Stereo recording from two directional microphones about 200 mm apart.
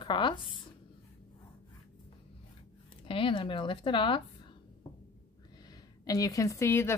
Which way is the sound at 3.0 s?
25° left (ahead or behind).